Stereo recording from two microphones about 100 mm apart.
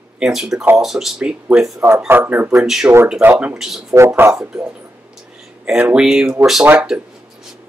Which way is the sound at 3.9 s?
30° right (ahead or behind).